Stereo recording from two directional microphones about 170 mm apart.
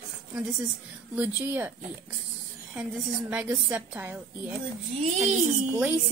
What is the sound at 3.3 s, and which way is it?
Speech, 10° right (ahead or behind).